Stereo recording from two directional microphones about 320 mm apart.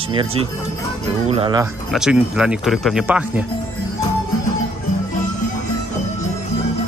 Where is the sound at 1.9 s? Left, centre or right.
Centre.